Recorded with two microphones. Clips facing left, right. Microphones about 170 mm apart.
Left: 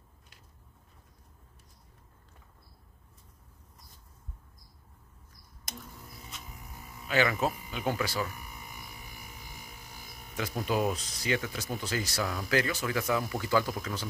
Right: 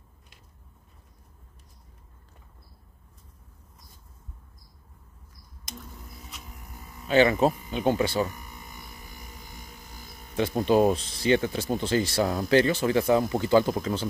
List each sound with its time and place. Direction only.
7.1 s speech: 30° right (ahead or behind)
8.5 s a sound: 10° left (ahead or behind)
10.3 s speech: 30° right (ahead or behind)